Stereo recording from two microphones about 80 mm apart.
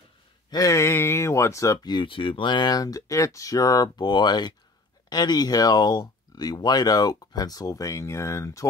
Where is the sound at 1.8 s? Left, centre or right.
Left.